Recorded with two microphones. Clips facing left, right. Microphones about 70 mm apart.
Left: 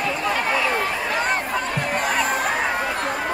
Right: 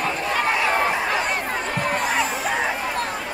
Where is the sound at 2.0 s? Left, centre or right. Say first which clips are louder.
Left 1 dB; left.